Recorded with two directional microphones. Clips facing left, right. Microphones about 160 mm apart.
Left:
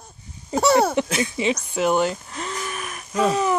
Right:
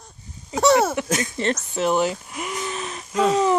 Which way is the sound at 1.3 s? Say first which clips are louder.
Left 1 dB; 5° left (ahead or behind).